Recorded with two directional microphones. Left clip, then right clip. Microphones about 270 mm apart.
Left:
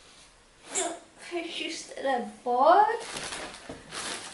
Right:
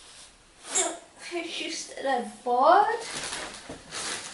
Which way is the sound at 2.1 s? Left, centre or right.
Centre.